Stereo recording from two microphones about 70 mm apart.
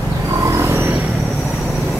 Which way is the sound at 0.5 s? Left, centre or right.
Right.